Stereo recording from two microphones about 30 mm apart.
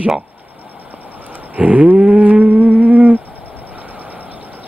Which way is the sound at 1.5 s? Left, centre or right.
Right.